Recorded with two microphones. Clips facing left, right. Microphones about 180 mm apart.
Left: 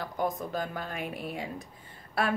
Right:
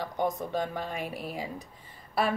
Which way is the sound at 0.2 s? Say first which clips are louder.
Right 2 dB; centre (ahead or behind).